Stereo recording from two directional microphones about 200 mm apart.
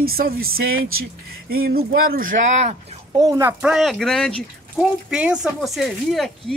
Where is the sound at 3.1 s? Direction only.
15° right (ahead or behind).